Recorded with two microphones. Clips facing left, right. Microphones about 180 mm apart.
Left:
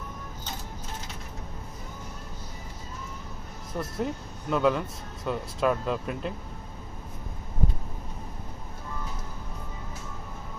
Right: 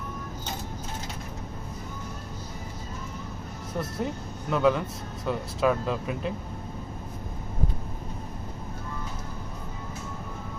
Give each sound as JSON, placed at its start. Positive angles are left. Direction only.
{"t": 4.0, "sound": "speech", "side_deg": 0}